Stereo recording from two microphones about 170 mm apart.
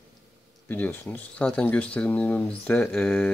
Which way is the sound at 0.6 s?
10° left (ahead or behind).